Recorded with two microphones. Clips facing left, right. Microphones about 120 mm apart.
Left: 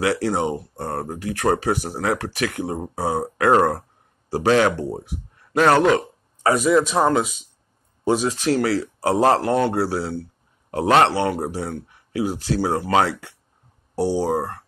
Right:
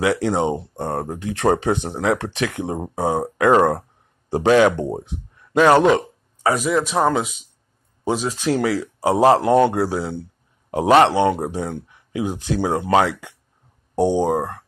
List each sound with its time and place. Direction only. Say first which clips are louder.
0.0 s speech: right 2 dB; 20° right (ahead or behind)
4.3 s speech: right 3 dB; 20° right (ahead or behind)